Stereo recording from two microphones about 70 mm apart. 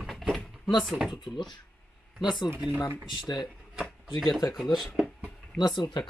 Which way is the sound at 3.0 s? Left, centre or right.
Left.